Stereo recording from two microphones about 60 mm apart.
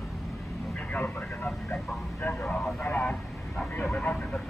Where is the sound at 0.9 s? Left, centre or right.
Left.